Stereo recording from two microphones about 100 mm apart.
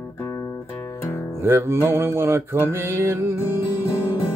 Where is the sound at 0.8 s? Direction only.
25° left (ahead or behind).